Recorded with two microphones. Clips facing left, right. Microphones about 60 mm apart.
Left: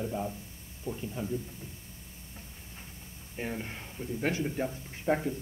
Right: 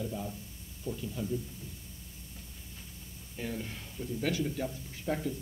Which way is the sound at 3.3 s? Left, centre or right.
Left.